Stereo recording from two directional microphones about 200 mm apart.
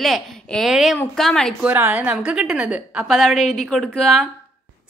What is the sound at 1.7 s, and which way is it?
A woman's voice, 10° right (ahead or behind).